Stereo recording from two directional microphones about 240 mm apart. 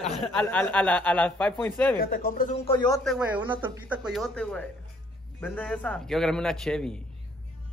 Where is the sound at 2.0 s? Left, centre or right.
Left.